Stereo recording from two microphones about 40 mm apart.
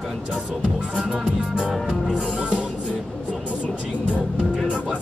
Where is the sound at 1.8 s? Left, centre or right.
Right.